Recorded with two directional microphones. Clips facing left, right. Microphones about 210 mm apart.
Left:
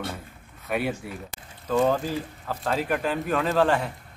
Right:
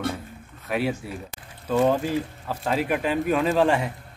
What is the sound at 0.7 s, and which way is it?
Speech, centre (ahead or behind).